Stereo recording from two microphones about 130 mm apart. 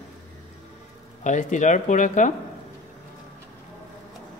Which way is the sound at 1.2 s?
70° left (ahead or behind).